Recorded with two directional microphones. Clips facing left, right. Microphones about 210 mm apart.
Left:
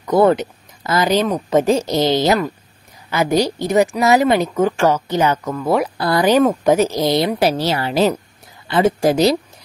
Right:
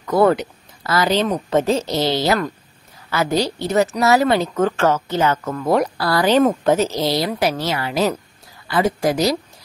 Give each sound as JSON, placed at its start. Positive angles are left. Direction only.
{"t": 0.0, "sound": "a woman's voice", "side_deg": 20}
{"t": 5.5, "sound": "speech", "side_deg": 0}
{"t": 5.9, "sound": "a woman's voice", "side_deg": 20}